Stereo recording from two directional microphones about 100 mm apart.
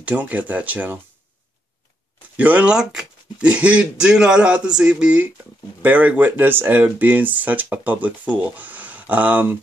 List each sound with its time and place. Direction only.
0.0 s speech: 15° right (ahead or behind)
2.3 s speech: 15° right (ahead or behind)